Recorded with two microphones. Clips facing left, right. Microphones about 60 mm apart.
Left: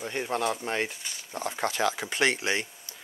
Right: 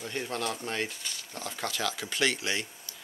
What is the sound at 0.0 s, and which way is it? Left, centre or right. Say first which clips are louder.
Speech: left 4 dB; left.